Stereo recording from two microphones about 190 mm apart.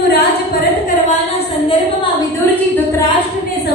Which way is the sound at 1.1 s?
30° left (ahead or behind).